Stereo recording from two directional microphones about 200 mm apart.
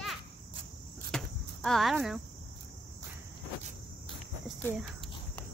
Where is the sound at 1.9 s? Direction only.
Centre (ahead or behind).